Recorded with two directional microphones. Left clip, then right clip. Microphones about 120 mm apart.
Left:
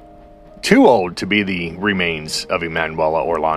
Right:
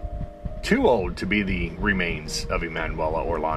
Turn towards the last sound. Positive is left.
turn(degrees=35)  # may be behind; listen again after turning